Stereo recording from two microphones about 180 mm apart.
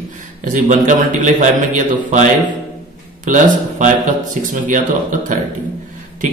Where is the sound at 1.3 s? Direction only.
45° right (ahead or behind).